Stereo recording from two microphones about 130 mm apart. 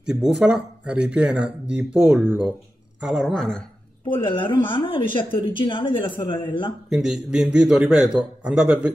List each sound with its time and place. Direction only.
0.0 s speech: 5° right (ahead or behind)
3.0 s a man's voice: centre (ahead or behind)
4.1 s a woman's voice: 40° left (ahead or behind)
6.9 s a man's voice: 5° right (ahead or behind)